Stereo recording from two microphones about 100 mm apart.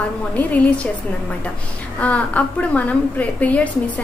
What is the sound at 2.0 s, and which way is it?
A woman's voice, 15° left (ahead or behind).